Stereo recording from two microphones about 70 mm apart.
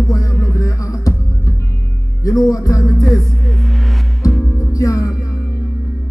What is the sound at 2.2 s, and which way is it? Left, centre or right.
Music, left.